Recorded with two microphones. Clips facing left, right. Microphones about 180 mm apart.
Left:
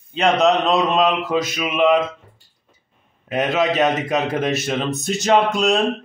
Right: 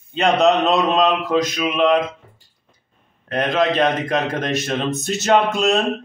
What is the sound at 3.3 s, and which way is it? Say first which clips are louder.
A man's voice: even; 5° left (ahead or behind).